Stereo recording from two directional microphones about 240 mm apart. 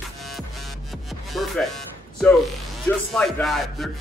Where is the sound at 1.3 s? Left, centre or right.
Centre.